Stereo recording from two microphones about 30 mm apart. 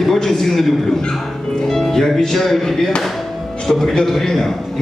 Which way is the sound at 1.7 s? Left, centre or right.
Centre.